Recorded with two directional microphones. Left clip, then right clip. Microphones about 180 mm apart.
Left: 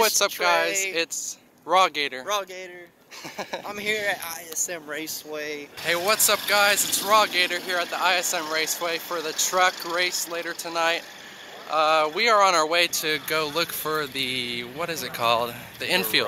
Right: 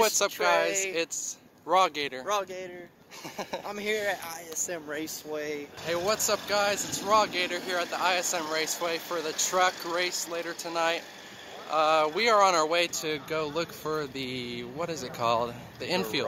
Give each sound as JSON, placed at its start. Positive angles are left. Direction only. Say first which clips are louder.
{"t": 0.0, "sound": "speech", "louder": "left 4 dB", "side_deg": 0}
{"t": 3.6, "sound": "speech", "louder": "left 4 dB", "side_deg": -25}
{"t": 5.3, "sound": "speech", "louder": "left 1 dB", "side_deg": -35}
{"t": 5.9, "sound": "speech", "louder": "left 6 dB", "side_deg": 5}